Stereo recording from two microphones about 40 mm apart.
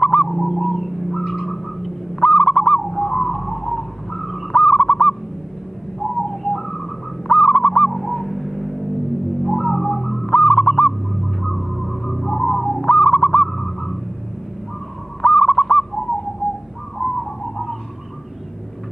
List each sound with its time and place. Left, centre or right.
0.2 s bird: centre
2.2 s owl: centre
2.7 s bird: centre
9.4 s owl: centre
15.2 s owl: centre
17.0 s bird: centre